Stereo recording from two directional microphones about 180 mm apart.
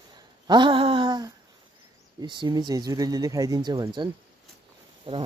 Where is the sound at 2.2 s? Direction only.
25° right (ahead or behind).